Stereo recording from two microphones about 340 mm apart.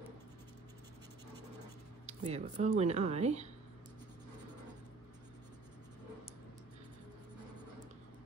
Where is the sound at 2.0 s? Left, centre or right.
Centre.